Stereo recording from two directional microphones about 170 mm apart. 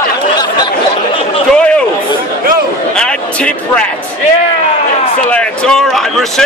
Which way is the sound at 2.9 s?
5° left (ahead or behind).